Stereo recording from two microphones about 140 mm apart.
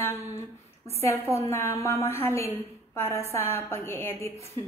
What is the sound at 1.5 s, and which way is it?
A woman's voice, 20° left (ahead or behind).